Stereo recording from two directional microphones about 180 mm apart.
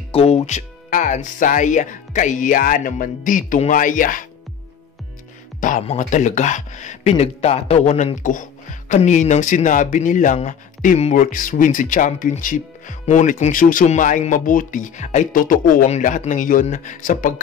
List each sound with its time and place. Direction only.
0.1 s speech: 35° left (ahead or behind)
5.6 s speech: 45° left (ahead or behind)